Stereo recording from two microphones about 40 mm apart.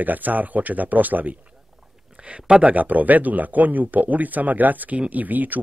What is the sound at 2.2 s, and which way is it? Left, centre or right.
Speech, right.